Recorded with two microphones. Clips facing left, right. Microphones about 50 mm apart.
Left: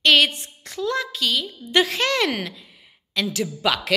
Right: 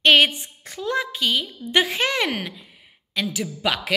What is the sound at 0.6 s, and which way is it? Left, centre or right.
A woman's voice, right.